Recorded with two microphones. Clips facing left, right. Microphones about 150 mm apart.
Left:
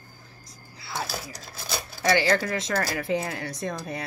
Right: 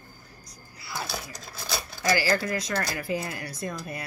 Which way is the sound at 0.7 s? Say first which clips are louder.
Left 3 dB; 25° left (ahead or behind).